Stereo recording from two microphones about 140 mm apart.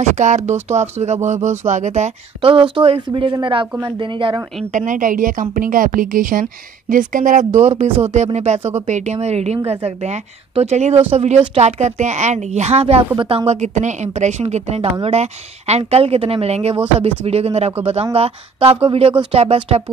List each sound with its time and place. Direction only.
0.1 s speech: 60° right (ahead or behind)
2.4 s speech: 40° right (ahead or behind)
4.6 s a woman's voice: 65° right (ahead or behind); by 13.6 s 40° right (ahead or behind)
13.6 s speech: 60° right (ahead or behind)